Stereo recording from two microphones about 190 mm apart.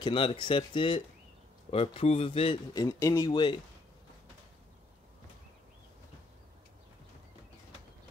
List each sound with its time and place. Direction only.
0.0 s a man's voice: 25° left (ahead or behind)